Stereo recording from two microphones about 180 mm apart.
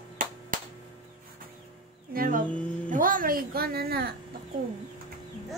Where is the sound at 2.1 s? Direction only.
55° right (ahead or behind).